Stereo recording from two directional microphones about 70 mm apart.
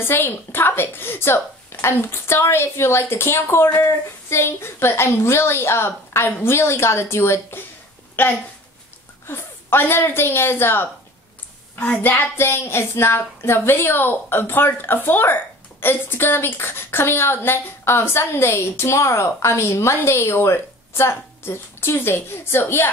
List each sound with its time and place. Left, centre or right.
0.0 s a woman's voice: left
12.0 s a woman's voice: left